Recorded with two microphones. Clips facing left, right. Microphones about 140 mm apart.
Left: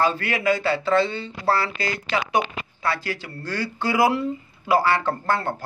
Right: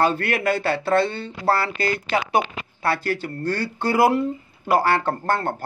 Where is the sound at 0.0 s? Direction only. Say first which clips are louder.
Right 2 dB; 60° right (ahead or behind).